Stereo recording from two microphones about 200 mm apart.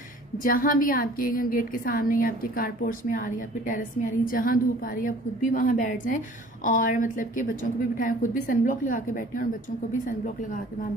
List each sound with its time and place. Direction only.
0.4 s a woman's voice: 45° left (ahead or behind)